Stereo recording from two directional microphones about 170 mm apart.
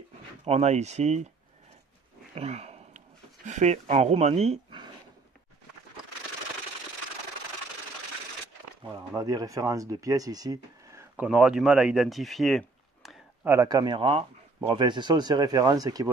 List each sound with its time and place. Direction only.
0.5 s speech: 40° right (ahead or behind)
2.3 s sniff: 40° right (ahead or behind)
3.4 s speech: 45° right (ahead or behind)
8.8 s speech: 20° right (ahead or behind)
11.2 s speech: 5° right (ahead or behind)
13.5 s speech: 20° right (ahead or behind)